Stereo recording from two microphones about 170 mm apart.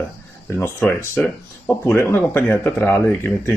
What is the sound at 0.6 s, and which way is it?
Speech, 15° left (ahead or behind).